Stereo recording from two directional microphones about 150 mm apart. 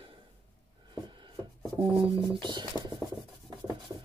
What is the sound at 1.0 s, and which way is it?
Rub, 30° right (ahead or behind).